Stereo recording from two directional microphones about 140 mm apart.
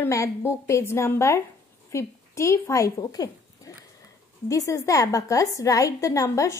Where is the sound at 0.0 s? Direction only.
20° left (ahead or behind).